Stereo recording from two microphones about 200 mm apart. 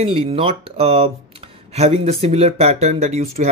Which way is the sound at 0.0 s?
25° right (ahead or behind).